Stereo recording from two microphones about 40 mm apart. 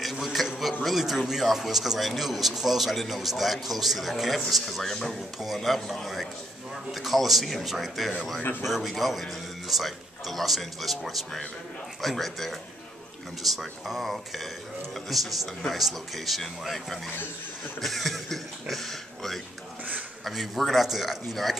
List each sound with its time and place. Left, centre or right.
0.0 s a sound: centre
0.8 s speech: centre
8.4 s speech: left
8.6 s speech: centre